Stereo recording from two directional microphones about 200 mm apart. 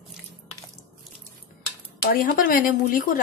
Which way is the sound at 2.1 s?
45° left (ahead or behind).